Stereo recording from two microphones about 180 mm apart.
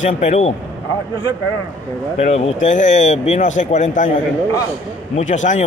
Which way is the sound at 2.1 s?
40° left (ahead or behind).